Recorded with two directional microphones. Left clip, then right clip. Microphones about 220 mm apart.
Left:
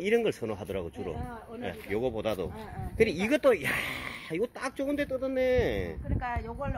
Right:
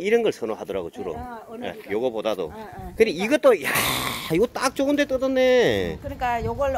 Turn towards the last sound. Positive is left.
turn(degrees=-45)  # may be behind; listen again after turning